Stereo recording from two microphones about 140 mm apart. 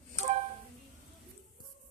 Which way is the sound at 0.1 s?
50° right (ahead or behind).